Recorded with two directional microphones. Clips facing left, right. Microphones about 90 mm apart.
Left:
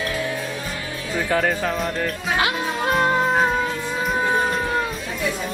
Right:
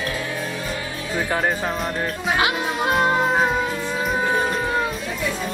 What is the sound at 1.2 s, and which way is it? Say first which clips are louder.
Music: left 2 dB; 25° right (ahead or behind).